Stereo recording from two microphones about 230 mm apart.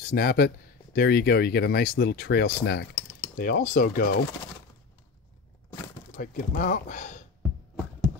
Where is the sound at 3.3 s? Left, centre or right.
Left.